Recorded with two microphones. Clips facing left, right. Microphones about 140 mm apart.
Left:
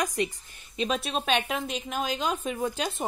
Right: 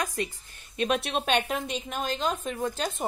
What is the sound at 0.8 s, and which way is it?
A woman's voice, centre (ahead or behind).